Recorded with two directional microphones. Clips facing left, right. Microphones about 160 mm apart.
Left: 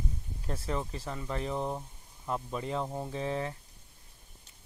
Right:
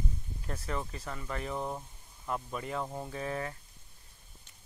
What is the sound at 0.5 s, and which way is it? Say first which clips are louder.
Speech: left 3 dB; 25° left (ahead or behind).